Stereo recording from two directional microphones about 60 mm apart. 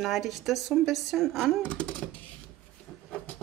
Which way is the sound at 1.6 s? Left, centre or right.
Left.